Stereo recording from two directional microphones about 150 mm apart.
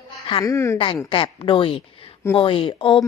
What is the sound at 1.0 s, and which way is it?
A woman's voice, 35° left (ahead or behind).